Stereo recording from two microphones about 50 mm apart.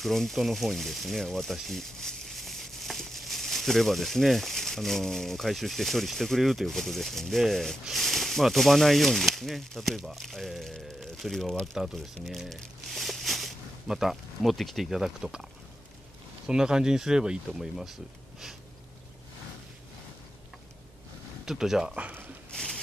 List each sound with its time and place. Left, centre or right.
0.0 s speech: centre
11.0 s a sound: centre
11.6 s speech: centre
16.4 s speech: centre
21.5 s speech: centre
21.9 s speech: right
22.5 s a sound: centre